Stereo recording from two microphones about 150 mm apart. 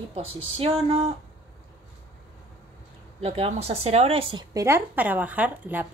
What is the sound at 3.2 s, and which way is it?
Speech, 40° right (ahead or behind).